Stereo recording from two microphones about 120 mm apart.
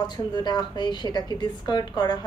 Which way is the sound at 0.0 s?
35° left (ahead or behind).